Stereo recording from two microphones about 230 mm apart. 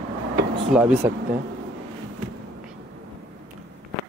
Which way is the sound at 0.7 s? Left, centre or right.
Centre.